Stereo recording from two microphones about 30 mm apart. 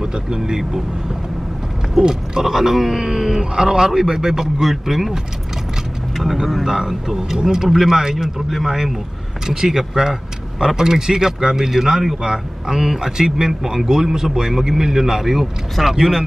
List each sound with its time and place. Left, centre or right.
0.0 s speech: right
2.0 s a man's voice: centre
6.6 s a man's voice: centre
8.5 s speech: centre
9.5 s a man's voice: centre
13.5 s a man's voice: centre